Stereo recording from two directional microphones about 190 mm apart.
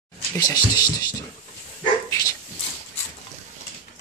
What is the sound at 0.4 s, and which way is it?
Speech, 20° left (ahead or behind).